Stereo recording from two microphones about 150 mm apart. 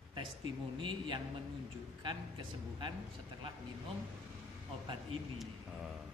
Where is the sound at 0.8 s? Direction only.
35° right (ahead or behind).